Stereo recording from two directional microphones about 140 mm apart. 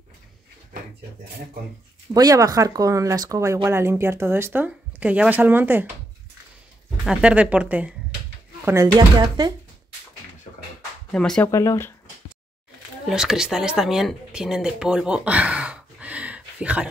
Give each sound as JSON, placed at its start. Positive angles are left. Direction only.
{"t": 2.1, "sound": "speech", "side_deg": -25}
{"t": 7.1, "sound": "speech", "side_deg": -10}
{"t": 8.6, "sound": "speech", "side_deg": -25}
{"t": 11.1, "sound": "speech", "side_deg": 5}
{"t": 11.4, "sound": "speech", "side_deg": 20}
{"t": 13.1, "sound": "speech", "side_deg": -5}